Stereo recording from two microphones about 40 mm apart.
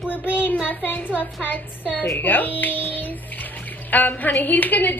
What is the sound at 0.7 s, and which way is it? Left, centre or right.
Speech, left.